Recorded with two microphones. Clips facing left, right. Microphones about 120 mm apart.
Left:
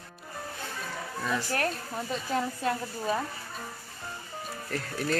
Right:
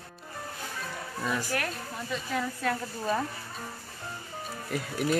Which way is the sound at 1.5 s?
35° left (ahead or behind).